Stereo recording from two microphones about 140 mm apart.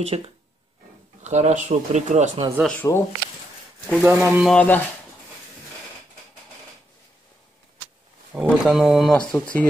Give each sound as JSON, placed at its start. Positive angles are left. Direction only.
{"t": 0.0, "sound": "speech", "side_deg": -45}
{"t": 1.2, "sound": "speech", "side_deg": -55}
{"t": 2.6, "sound": "speech", "side_deg": 5}
{"t": 3.9, "sound": "speech", "side_deg": -10}
{"t": 4.5, "sound": "speech", "side_deg": 10}
{"t": 8.3, "sound": "speech", "side_deg": -5}